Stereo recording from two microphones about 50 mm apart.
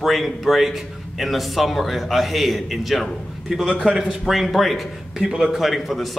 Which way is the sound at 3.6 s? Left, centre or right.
Centre.